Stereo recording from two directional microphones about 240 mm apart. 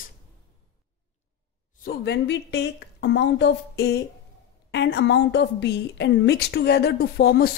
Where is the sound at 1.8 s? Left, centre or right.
Left.